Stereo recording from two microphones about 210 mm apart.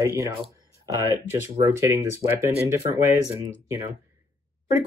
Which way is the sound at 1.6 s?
15° right (ahead or behind).